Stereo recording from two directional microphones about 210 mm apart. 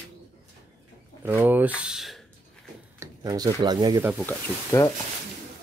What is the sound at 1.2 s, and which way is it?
Speech, 10° right (ahead or behind).